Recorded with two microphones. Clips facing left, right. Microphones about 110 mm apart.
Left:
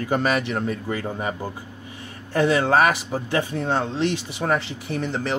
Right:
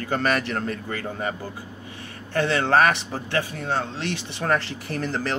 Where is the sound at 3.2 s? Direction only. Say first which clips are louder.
Left 2 dB; 20° left (ahead or behind).